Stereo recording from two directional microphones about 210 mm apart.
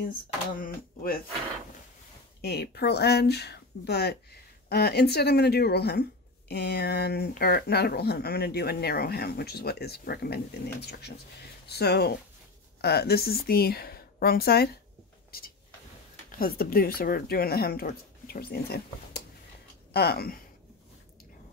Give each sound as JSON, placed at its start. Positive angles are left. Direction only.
{"t": 0.6, "sound": "speech", "side_deg": 45}
{"t": 2.4, "sound": "speech", "side_deg": 50}
{"t": 16.3, "sound": "speech", "side_deg": 45}